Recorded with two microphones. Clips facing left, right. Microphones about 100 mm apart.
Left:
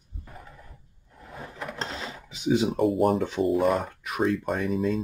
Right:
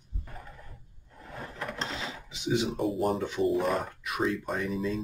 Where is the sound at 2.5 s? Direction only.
45° left (ahead or behind).